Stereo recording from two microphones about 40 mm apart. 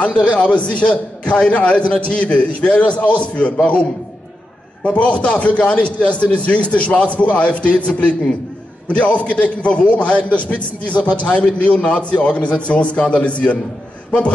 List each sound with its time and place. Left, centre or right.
0.4 s a man's voice: left
4.8 s a man's voice: left